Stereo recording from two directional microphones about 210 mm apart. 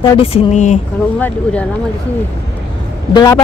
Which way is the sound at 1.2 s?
5° left (ahead or behind).